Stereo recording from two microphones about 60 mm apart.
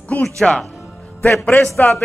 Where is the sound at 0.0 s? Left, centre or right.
Left.